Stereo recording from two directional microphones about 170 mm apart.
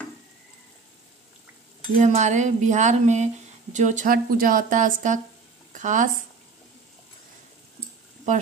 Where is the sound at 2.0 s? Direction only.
45° right (ahead or behind).